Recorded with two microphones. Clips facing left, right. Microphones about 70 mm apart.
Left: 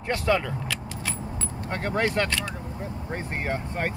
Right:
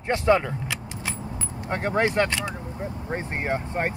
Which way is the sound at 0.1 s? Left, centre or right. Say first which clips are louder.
Right 4 dB; right.